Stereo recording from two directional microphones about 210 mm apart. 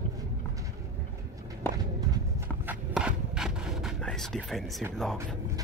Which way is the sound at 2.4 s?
10° right (ahead or behind).